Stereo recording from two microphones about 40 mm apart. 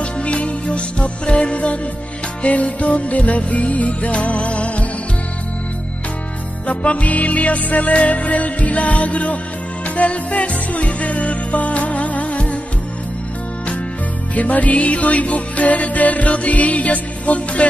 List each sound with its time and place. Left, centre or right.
0.0 s music: left
6.7 s music: left
14.3 s music: left